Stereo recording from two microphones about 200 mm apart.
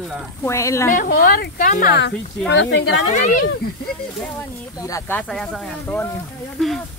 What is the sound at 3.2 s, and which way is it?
Speech, 40° left (ahead or behind).